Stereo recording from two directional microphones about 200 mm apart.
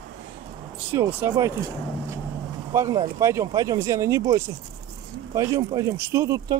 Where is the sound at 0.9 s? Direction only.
10° right (ahead or behind).